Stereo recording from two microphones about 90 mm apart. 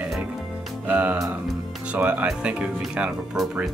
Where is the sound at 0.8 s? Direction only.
20° right (ahead or behind).